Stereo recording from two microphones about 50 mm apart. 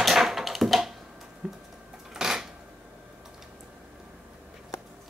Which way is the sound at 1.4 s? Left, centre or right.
Centre.